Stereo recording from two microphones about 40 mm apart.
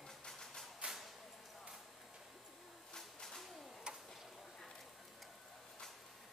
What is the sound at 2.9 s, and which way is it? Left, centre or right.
Pigeon, centre.